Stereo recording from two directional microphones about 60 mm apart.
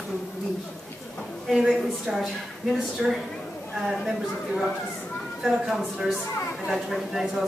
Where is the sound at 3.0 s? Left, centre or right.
Centre.